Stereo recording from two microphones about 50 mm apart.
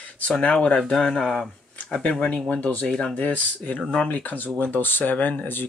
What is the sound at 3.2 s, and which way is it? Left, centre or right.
Speech, left.